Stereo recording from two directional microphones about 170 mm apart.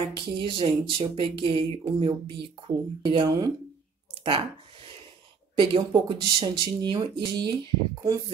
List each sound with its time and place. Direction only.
0.0 s speech: 30° right (ahead or behind)
5.6 s speech: 30° right (ahead or behind)